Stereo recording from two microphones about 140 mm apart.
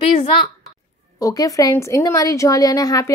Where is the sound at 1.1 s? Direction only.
25° left (ahead or behind).